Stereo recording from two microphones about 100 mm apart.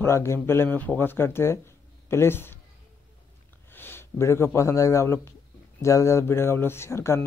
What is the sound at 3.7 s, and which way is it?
A man's voice, 20° left (ahead or behind).